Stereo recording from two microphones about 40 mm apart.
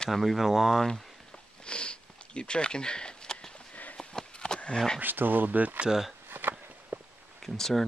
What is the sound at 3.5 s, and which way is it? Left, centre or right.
Sniff, left.